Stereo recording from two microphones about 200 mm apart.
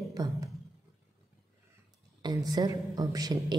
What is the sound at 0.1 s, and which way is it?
Speech, 15° right (ahead or behind).